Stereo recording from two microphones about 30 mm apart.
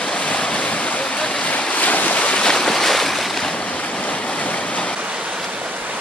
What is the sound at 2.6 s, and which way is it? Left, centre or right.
Boat, centre.